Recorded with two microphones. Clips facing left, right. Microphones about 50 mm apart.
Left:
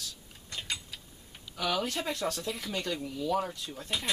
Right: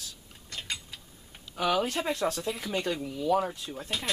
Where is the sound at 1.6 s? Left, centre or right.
Centre.